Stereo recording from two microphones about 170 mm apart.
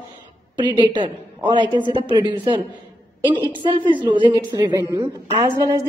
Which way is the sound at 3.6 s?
30° right (ahead or behind).